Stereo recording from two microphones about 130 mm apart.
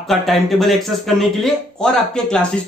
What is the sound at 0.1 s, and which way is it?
A man's voice, centre (ahead or behind).